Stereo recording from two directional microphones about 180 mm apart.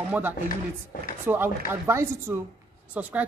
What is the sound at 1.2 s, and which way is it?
Speech, 10° right (ahead or behind).